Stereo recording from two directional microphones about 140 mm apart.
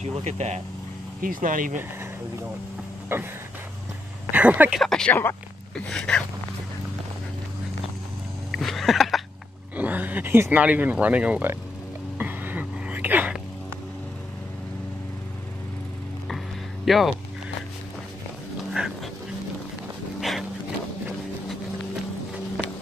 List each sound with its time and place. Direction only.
0.0 s speech: 55° right (ahead or behind)
1.2 s speech: 80° right
3.1 s speech: 15° right (ahead or behind)
4.3 s speech: 10° right (ahead or behind)
4.7 s speech: 5° left (ahead or behind)
5.9 s a sound: 5° left (ahead or behind)
8.5 s a sound: centre (ahead or behind)
9.8 s speech: 10° right (ahead or behind)
12.2 s a sound: 15° right (ahead or behind)
16.8 s speech: centre (ahead or behind)
18.8 s dog: 10° right (ahead or behind)
20.2 s a sound: centre (ahead or behind)